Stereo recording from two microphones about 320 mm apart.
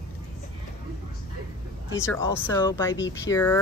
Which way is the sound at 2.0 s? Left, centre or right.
Centre.